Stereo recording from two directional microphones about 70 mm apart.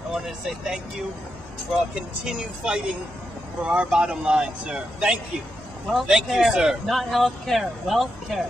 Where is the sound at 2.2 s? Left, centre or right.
Centre.